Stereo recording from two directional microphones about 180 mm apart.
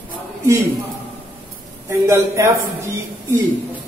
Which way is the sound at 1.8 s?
15° right (ahead or behind).